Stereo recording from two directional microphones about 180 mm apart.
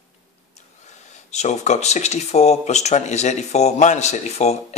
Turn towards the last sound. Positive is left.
turn(degrees=35)  # may be behind; listen again after turning